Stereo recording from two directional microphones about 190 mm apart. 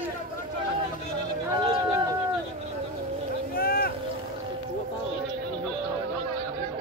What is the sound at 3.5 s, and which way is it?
Boat, 50° left (ahead or behind).